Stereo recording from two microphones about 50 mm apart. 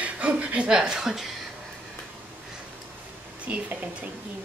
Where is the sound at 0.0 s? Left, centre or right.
Right; by 1.3 s centre.